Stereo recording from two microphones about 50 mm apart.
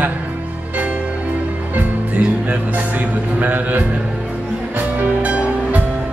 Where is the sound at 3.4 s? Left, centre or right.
Right.